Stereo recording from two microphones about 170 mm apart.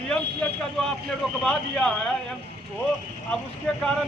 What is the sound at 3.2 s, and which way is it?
Speech, 5° left (ahead or behind).